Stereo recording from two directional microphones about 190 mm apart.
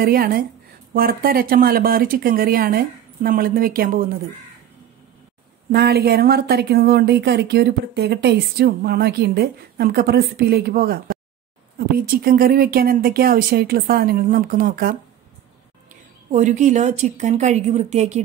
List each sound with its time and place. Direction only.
0.0 s speech: 50° right (ahead or behind)
5.7 s speech: 55° right (ahead or behind)
16.3 s a woman's voice: 40° right (ahead or behind)